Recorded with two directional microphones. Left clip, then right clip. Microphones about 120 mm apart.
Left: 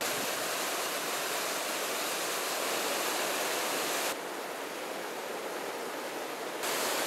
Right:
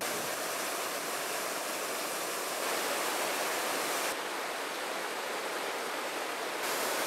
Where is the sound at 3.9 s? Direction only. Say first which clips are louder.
Even; 10° left (ahead or behind).